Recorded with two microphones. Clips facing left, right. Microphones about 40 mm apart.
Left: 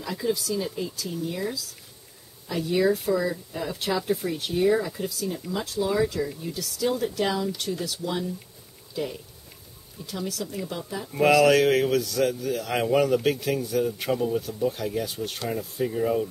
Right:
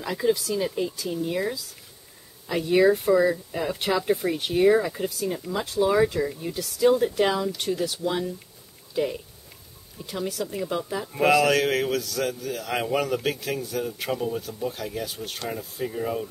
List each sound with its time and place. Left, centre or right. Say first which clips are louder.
0.0 s speech: right 4 dB; right
2.4 s speech: right 4 dB; right; by 16.3 s centre